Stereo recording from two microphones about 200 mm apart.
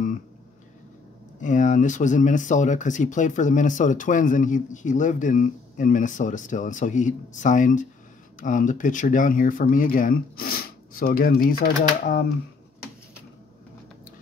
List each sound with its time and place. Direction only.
1.4 s speech: 40° left (ahead or behind)